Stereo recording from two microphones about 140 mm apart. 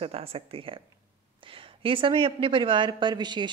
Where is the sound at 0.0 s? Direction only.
45° right (ahead or behind).